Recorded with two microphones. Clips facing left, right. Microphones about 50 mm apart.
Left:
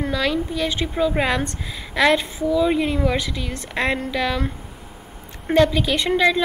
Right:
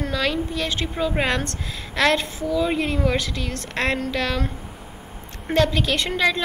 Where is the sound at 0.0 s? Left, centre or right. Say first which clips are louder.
Left 2 dB; centre.